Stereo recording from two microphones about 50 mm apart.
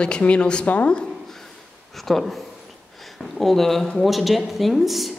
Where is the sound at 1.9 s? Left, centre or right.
Centre.